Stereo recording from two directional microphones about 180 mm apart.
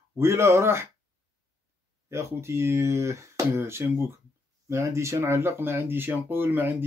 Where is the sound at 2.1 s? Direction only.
15° right (ahead or behind).